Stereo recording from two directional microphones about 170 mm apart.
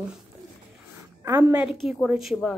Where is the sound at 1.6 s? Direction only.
5° right (ahead or behind).